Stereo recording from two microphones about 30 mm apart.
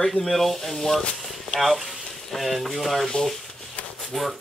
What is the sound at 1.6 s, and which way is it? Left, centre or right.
Speech, centre.